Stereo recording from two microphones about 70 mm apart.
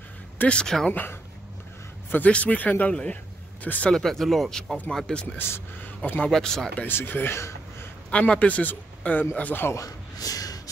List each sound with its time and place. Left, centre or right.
0.4 s speech: centre
0.8 s speech: left
3.9 s speech: centre
5.4 s a man's voice: left
6.2 s speech: centre
6.8 s speech: left
8.1 s speech: centre
10.1 s a sound: left